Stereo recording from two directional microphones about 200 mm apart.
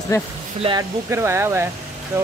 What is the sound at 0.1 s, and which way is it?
Speech, 15° left (ahead or behind).